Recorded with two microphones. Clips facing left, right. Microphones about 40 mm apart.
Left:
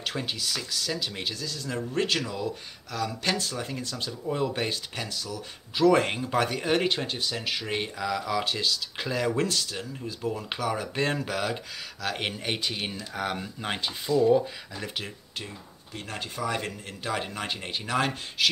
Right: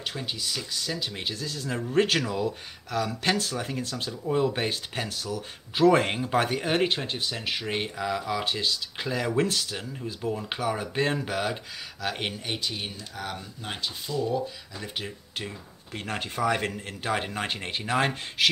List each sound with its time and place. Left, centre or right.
0.3 s speech: centre
1.7 s speech: centre
2.0 s speech: right
4.1 s speech: centre
12.3 s speech: centre
15.9 s speech: right